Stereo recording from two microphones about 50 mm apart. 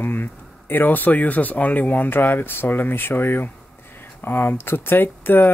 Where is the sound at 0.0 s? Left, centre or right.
Left.